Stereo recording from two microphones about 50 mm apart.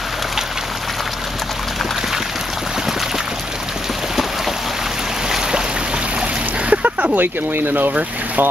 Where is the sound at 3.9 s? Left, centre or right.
Centre; by 8.4 s right.